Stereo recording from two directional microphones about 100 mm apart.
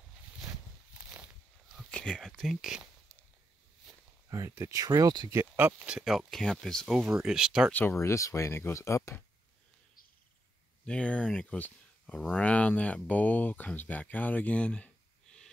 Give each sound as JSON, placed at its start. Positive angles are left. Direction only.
{"t": 1.1, "sound": "a sound", "side_deg": -5}
{"t": 1.9, "sound": "speech", "side_deg": 10}
{"t": 4.3, "sound": "speech", "side_deg": -30}
{"t": 5.6, "sound": "speech", "side_deg": -25}
{"t": 5.9, "sound": "speech", "side_deg": -5}
{"t": 7.0, "sound": "speech", "side_deg": -10}
{"t": 8.0, "sound": "speech", "side_deg": 30}
{"t": 10.9, "sound": "speech", "side_deg": 10}